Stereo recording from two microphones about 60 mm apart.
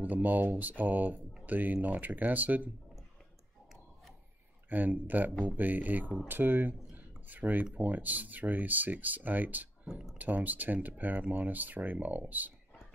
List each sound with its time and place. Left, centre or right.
0.0 s speech: right
4.6 s speech: right